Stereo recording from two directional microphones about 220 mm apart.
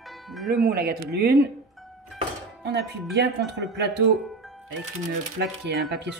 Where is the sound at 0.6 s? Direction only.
45° right (ahead or behind).